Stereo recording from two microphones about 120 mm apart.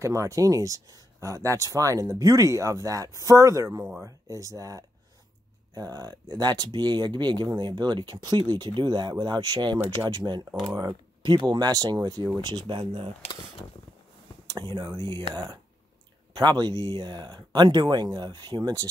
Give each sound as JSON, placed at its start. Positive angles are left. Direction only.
{"t": 0.0, "sound": "speech", "side_deg": -25}
{"t": 14.6, "sound": "speech", "side_deg": -40}
{"t": 16.3, "sound": "speech", "side_deg": -35}